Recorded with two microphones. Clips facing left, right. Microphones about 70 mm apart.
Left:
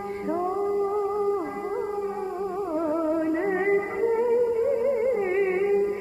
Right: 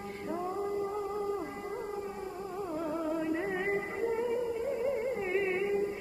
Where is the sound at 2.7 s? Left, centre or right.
Left.